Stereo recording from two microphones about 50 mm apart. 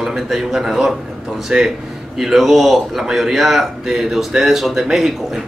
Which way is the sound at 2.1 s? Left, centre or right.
Centre.